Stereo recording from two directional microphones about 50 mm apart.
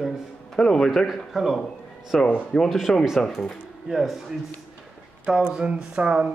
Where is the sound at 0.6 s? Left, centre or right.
Centre.